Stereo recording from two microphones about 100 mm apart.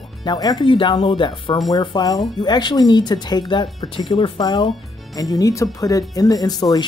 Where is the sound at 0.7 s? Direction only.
55° left (ahead or behind).